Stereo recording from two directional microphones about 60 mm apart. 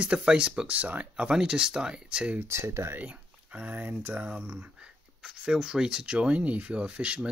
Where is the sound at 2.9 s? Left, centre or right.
Right.